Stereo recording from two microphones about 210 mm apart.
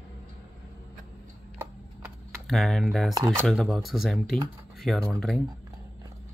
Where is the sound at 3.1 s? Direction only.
15° right (ahead or behind).